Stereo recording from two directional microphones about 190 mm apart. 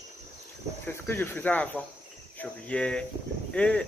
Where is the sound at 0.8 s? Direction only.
10° left (ahead or behind).